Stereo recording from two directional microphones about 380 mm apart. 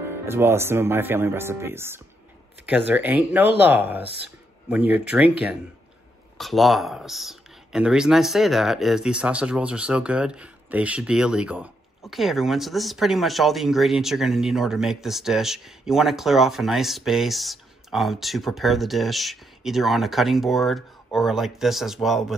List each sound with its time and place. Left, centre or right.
0.1 s speech: centre